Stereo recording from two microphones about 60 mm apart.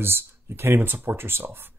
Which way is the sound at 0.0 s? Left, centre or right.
Right.